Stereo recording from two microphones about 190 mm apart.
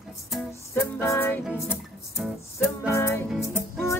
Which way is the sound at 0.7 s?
10° left (ahead or behind).